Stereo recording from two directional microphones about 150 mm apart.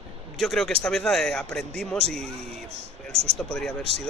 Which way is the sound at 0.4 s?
5° left (ahead or behind).